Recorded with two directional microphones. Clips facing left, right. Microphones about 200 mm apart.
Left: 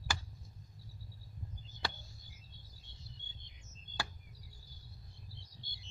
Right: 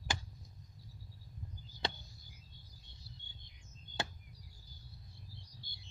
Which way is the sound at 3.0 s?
20° left (ahead or behind).